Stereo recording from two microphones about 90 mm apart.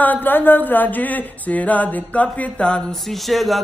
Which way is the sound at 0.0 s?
20° left (ahead or behind).